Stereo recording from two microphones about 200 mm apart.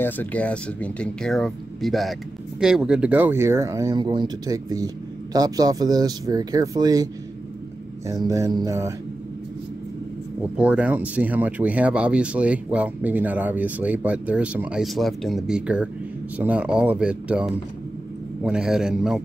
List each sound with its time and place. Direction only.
0.0 s speech: 10° left (ahead or behind); by 7.1 s 20° right (ahead or behind)
8.3 s speech: 20° right (ahead or behind)
10.6 s speech: 5° right (ahead or behind)